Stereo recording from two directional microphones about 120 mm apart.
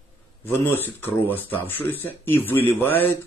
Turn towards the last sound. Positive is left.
turn(degrees=15)  # may be behind; listen again after turning